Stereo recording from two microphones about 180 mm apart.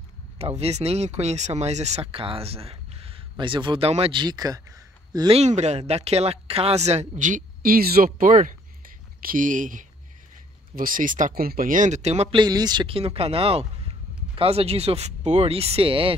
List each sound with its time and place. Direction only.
0.4 s speech: 35° right (ahead or behind); by 5.3 s 20° right (ahead or behind)
5.3 s speech: 40° right (ahead or behind)
12.4 s speech: 20° right (ahead or behind)